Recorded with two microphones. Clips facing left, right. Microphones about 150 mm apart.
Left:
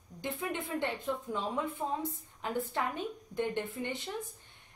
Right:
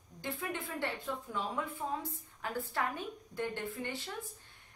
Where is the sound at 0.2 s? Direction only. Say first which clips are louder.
Left 3 dB; 20° left (ahead or behind).